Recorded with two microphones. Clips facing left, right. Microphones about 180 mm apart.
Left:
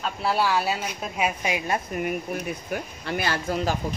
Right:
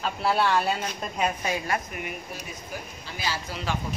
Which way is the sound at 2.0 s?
55° left (ahead or behind).